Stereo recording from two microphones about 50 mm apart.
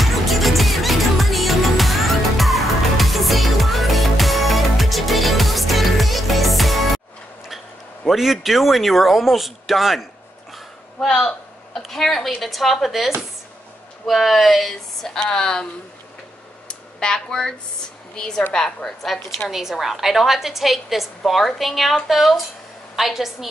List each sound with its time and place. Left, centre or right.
0.0 s music: centre
8.1 s speech: centre
11.0 s a sound: centre
12.4 s speech: centre
15.1 s speech: centre
16.6 s a sound: centre
18.1 s a woman's voice: centre
19.5 s speech: centre